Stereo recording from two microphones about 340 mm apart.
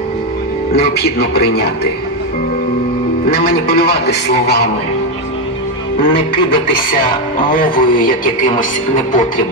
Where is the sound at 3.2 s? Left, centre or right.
Left.